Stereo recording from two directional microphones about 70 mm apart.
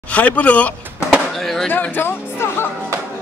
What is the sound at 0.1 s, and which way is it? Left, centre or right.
Speech, left.